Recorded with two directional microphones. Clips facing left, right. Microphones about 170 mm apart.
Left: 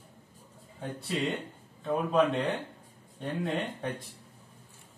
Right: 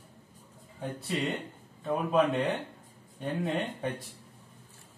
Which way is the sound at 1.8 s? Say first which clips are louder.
Even; centre (ahead or behind).